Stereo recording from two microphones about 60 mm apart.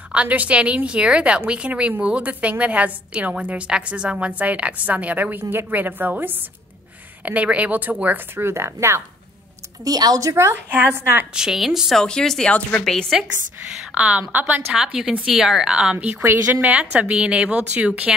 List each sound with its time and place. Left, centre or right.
0.1 s a woman's voice: right
5.4 s a woman's voice: right
7.2 s a woman's voice: right
8.4 s speech: right
9.8 s speech: right
10.3 s speech: right
10.7 s a woman's voice: right
11.3 s speech: centre
12.0 s speech: centre
13.9 s a woman's voice: centre
14.7 s a woman's voice: centre